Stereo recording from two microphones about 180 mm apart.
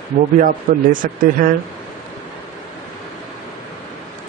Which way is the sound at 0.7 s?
40° right (ahead or behind).